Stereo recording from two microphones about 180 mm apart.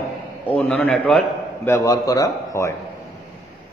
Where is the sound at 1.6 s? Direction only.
15° left (ahead or behind).